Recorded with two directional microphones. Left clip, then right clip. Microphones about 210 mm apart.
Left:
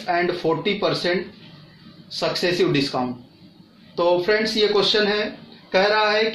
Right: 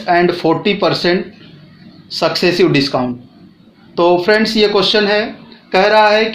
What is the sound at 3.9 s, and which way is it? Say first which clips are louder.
Speech: right 8 dB; 45° right (ahead or behind).